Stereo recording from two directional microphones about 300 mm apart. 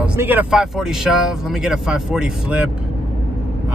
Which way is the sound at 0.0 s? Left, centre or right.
Centre.